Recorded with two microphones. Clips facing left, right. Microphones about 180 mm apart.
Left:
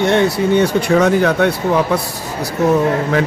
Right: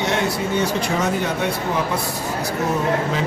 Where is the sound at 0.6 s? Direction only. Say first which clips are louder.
Left 8 dB; 70° left (ahead or behind).